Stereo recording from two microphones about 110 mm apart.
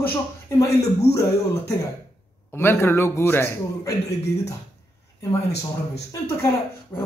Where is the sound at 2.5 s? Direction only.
20° left (ahead or behind).